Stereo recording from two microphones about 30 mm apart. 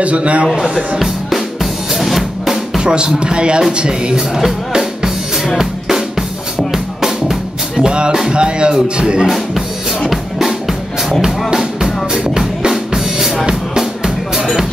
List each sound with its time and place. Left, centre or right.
0.0 s a man's voice: right
0.9 s drum: centre
2.8 s speech: right
4.3 s music: centre
5.6 s drum: centre
6.7 s music: centre
7.9 s speech: right
10.0 s music: centre
11.1 s speech: right
12.4 s drum: right
13.7 s music: centre